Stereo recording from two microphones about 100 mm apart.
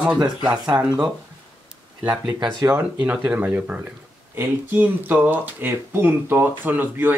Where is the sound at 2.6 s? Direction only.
15° right (ahead or behind).